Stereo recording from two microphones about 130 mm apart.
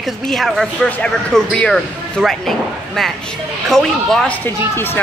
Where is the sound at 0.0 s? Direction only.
Centre (ahead or behind).